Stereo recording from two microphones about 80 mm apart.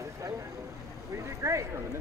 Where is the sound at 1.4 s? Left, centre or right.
Right.